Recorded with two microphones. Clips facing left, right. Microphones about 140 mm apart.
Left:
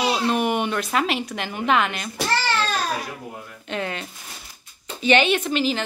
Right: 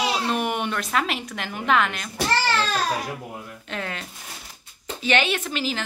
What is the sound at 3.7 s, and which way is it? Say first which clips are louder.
Speech: left 4 dB; centre (ahead or behind).